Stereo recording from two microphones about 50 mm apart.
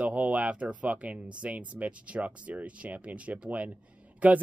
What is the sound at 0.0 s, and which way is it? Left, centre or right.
Speech, right.